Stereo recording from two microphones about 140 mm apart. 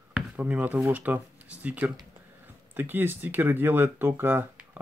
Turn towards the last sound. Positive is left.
turn(degrees=-15)  # may be behind; listen again after turning